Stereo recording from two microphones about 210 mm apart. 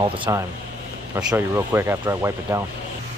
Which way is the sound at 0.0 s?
25° right (ahead or behind).